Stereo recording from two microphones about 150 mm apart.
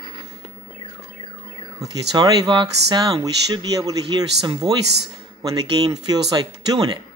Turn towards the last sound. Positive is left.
turn(degrees=-25)  # may be behind; listen again after turning